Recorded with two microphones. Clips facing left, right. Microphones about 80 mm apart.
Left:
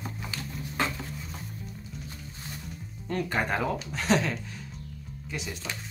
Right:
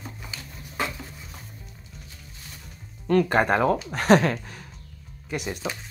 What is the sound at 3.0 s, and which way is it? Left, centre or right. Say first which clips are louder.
Speech: right 9 dB; right.